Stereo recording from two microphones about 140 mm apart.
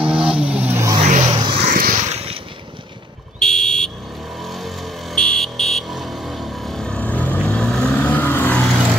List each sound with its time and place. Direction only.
0.0 s vehicle: 5° right (ahead or behind)
1.0 s vehicle: 60° right (ahead or behind)
1.3 s vehicle: 35° right (ahead or behind)
1.7 s vehicle: 75° right (ahead or behind)
2.0 s boat: 45° right (ahead or behind)
3.3 s a sound: 5° left (ahead or behind)
4.4 s vehicle: centre (ahead or behind)